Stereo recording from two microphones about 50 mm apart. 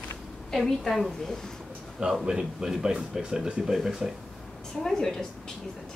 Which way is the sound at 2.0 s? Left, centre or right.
Centre.